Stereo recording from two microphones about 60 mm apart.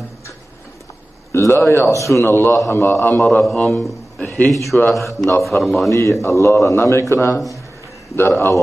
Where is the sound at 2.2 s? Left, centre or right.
Left.